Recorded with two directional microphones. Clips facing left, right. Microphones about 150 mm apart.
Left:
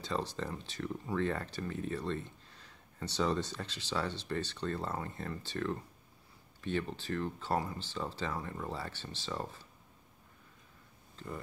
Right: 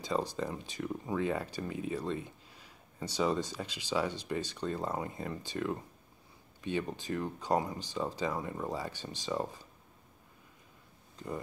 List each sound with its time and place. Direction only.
0.0 s speech: 10° right (ahead or behind)
11.2 s speech: 15° right (ahead or behind)